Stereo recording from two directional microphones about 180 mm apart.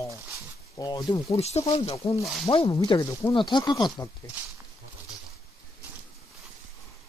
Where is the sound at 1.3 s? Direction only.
35° left (ahead or behind).